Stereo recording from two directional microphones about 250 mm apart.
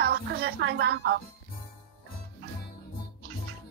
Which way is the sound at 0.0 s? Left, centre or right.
Right.